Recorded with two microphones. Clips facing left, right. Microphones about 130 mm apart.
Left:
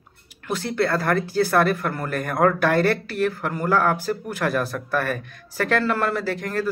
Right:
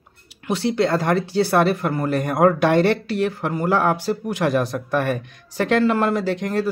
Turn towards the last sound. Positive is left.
turn(degrees=-15)  # may be behind; listen again after turning